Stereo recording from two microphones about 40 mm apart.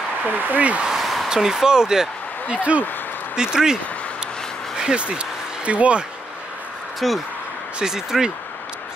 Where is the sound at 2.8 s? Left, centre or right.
Left.